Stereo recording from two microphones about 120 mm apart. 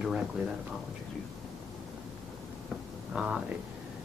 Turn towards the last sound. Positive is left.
turn(degrees=-5)  # may be behind; listen again after turning